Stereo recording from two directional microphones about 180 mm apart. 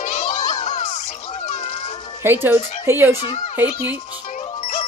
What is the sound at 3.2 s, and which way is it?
Speech, 35° left (ahead or behind).